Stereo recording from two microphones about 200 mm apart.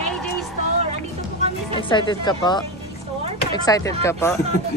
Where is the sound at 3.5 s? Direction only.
20° left (ahead or behind).